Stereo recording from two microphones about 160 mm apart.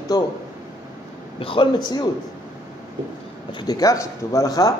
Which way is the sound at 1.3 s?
35° left (ahead or behind).